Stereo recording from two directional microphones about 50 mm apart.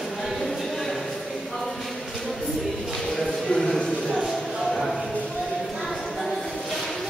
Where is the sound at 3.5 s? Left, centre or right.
Centre.